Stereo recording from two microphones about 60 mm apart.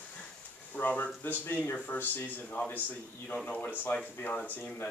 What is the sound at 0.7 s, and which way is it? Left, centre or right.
Speech, left.